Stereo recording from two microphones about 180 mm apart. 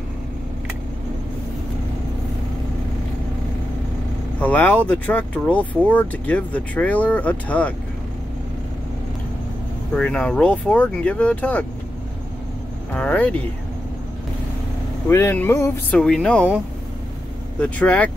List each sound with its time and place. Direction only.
4.4 s speech: 10° left (ahead or behind)
9.9 s speech: 5° left (ahead or behind)
12.9 s speech: 10° left (ahead or behind)
15.0 s speech: 15° left (ahead or behind)
17.6 s speech: 5° left (ahead or behind)